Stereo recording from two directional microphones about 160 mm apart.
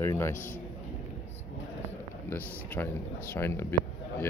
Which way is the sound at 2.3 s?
15° left (ahead or behind).